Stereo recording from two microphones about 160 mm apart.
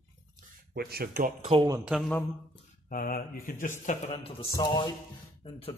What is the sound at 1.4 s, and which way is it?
Speech, 35° right (ahead or behind).